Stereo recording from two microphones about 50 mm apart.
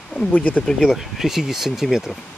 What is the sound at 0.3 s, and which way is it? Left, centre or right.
Speech, left.